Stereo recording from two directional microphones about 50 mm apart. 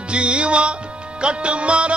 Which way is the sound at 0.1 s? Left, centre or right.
Right.